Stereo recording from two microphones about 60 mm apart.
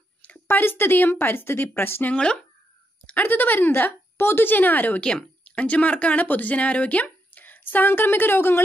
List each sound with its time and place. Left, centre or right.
0.2 s a woman's voice: left
2.1 s speech: centre
3.1 s a woman's voice: left
5.0 s speech: centre; by 8.6 s left